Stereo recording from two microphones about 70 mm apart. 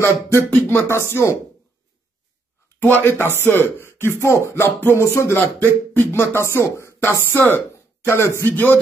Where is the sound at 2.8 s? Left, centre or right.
Left.